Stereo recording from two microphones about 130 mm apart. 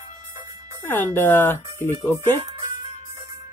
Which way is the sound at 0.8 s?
15° left (ahead or behind).